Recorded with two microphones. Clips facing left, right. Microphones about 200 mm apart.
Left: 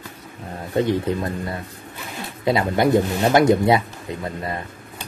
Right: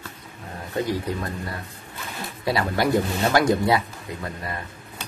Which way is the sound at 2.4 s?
20° left (ahead or behind).